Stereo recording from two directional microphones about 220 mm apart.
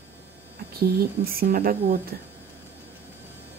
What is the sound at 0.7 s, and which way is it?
Speech, 45° right (ahead or behind).